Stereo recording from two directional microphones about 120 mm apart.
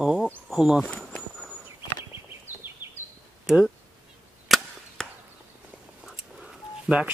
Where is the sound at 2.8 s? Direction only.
15° right (ahead or behind).